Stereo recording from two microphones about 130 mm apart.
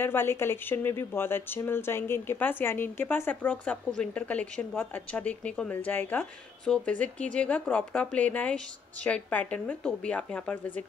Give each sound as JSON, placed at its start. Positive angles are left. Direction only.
{"t": 0.0, "sound": "speech", "side_deg": 15}